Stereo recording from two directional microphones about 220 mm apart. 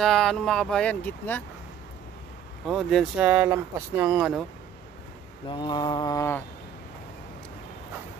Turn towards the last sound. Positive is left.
turn(degrees=15)  # may be behind; listen again after turning